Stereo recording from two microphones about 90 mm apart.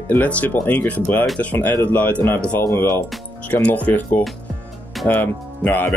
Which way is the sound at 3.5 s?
20° left (ahead or behind).